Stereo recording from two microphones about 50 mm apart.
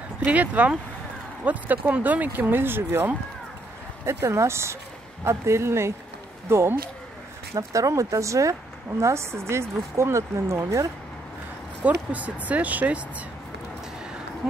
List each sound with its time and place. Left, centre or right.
0.2 s speech: right
4.0 s speech: right
7.7 s a woman's voice: right
9.0 s speech: right
12.1 s speech: right